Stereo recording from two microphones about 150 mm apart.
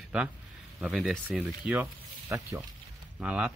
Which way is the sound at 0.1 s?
5° right (ahead or behind).